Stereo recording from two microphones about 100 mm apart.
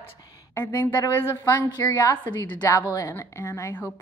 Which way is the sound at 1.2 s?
25° left (ahead or behind).